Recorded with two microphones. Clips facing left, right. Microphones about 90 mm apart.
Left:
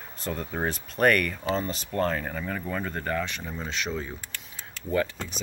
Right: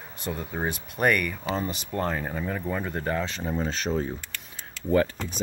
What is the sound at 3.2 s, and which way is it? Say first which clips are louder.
Speech: right 6 dB; 35° right (ahead or behind).